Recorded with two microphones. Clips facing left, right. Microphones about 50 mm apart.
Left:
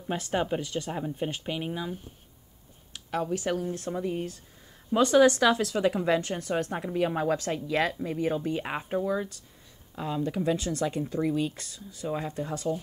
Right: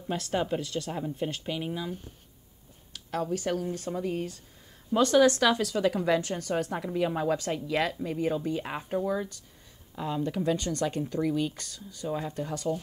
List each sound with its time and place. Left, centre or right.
0.1 s speech: centre
8.5 s speech: left
9.0 s speech: centre
10.2 s speech: centre